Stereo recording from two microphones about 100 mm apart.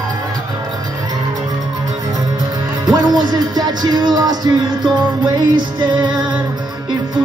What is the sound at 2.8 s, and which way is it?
Music, 45° right (ahead or behind).